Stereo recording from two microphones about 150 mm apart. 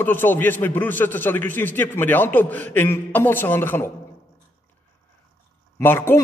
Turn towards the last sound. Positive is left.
turn(degrees=15)  # may be behind; listen again after turning